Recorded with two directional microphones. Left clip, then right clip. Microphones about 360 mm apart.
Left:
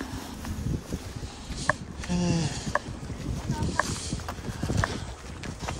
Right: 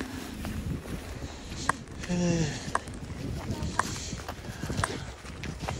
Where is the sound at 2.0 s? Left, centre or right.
Centre.